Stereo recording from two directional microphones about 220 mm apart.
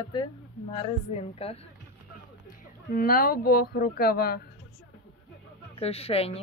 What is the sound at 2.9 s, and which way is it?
Speech, 40° left (ahead or behind).